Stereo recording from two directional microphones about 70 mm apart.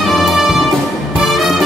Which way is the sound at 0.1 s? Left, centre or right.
Centre.